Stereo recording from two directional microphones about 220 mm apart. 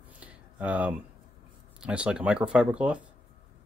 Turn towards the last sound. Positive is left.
turn(degrees=-5)  # may be behind; listen again after turning